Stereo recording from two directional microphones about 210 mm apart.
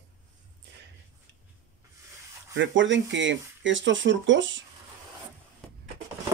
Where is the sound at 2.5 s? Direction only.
65° right (ahead or behind).